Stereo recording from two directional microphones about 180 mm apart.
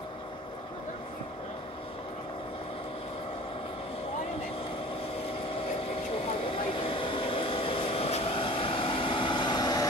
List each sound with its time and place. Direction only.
6.1 s vehicle: 30° left (ahead or behind)